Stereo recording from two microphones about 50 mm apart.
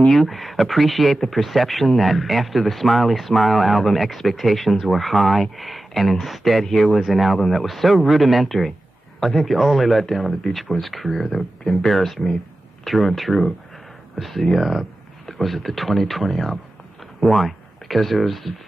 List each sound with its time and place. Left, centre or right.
0.1 s speech: centre